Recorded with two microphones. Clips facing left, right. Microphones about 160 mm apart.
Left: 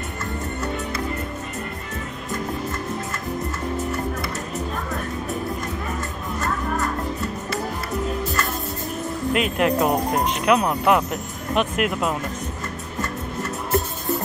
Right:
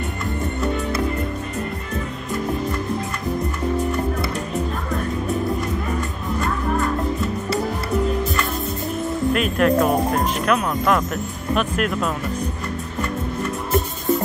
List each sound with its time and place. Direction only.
9.3 s speech: 20° left (ahead or behind)